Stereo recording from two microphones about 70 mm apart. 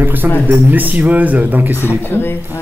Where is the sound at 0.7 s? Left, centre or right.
Right.